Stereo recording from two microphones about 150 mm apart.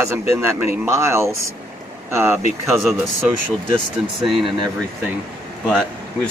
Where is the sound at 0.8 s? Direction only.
20° right (ahead or behind).